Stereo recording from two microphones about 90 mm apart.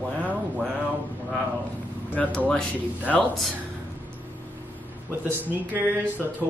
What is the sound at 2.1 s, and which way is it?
Speech, 15° left (ahead or behind).